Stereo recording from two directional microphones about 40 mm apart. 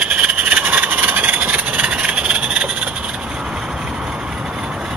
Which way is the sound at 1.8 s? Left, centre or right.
Right.